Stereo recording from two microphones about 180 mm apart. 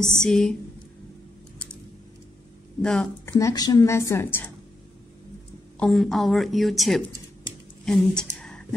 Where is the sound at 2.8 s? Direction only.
5° left (ahead or behind).